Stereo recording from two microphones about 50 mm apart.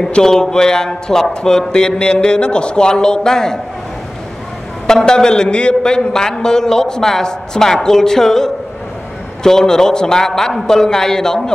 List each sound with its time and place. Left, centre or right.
0.0 s a man's voice: centre
4.8 s a man's voice: centre